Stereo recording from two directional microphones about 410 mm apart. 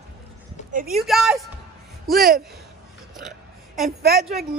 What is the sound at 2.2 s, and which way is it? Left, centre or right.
Speech, right.